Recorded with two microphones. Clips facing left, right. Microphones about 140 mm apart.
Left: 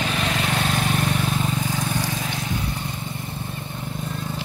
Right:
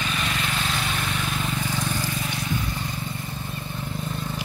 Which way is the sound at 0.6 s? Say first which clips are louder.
Left 5 dB; 45° left (ahead or behind).